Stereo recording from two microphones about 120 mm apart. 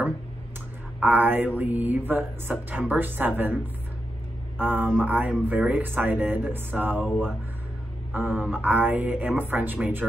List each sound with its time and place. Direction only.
0.9 s speech: 15° right (ahead or behind)
4.6 s speech: 15° right (ahead or behind)